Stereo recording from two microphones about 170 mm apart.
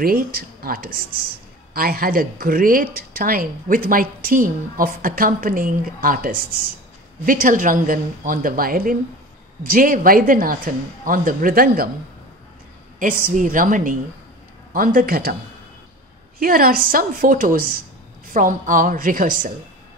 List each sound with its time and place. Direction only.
0.0 s a man's voice: 60° right (ahead or behind)
13.0 s a woman's voice: 55° right (ahead or behind)
16.3 s a man's voice: 60° right (ahead or behind)